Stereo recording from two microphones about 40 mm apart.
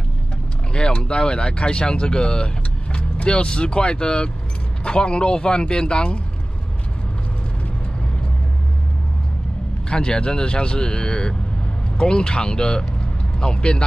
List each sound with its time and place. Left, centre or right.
0.7 s speech: left
9.8 s speech: left